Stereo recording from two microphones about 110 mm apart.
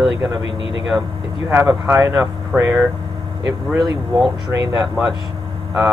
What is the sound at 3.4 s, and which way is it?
Speech, 35° right (ahead or behind).